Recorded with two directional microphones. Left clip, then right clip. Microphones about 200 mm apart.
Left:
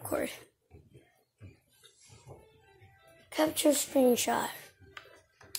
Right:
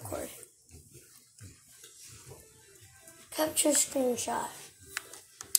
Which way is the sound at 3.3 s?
30° left (ahead or behind).